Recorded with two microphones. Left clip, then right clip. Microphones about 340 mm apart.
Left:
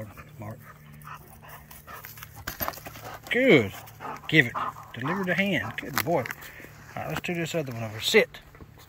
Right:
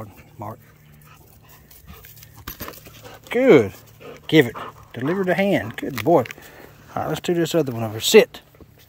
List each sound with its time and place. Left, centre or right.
3.3 s speech: centre